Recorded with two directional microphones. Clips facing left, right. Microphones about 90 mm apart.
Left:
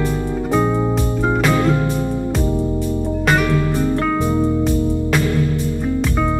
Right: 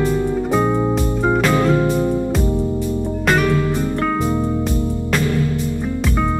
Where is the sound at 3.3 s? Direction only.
Centre (ahead or behind).